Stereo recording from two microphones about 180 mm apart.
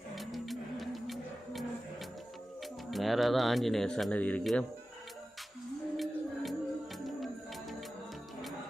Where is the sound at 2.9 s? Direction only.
Centre (ahead or behind).